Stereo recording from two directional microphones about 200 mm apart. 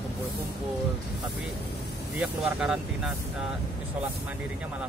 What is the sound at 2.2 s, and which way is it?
Speech, 5° right (ahead or behind).